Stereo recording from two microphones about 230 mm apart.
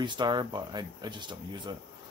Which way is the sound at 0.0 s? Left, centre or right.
Centre.